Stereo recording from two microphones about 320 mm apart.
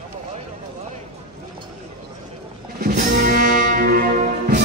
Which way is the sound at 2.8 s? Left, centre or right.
Right.